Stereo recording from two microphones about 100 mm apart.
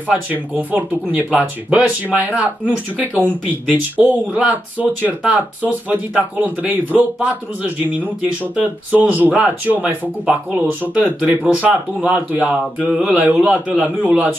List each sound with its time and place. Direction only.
0.1 s speech: 15° right (ahead or behind)